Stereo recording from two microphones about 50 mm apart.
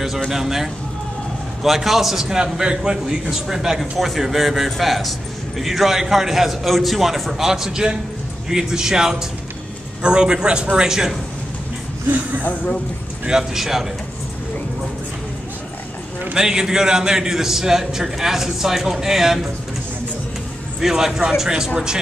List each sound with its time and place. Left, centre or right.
0.3 s a man's voice: centre
13.3 s a man's voice: centre
16.3 s a man's voice: centre
20.8 s a man's voice: centre